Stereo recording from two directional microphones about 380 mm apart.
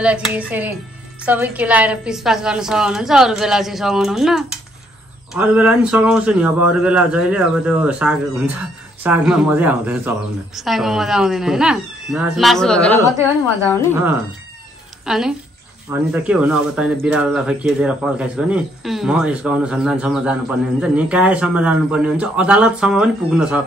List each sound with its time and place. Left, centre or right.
0.0 s speech: centre
15.0 s speech: centre